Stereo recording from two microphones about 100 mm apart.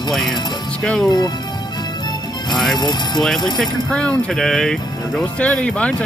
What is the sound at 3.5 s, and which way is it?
Speech, 10° left (ahead or behind).